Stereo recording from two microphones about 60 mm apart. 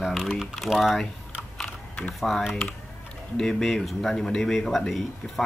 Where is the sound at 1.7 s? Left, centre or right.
Left.